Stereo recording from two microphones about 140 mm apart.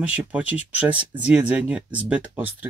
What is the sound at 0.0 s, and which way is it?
Speech, 10° right (ahead or behind).